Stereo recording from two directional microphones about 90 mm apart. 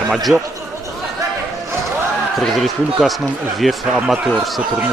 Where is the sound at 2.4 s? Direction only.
Centre (ahead or behind).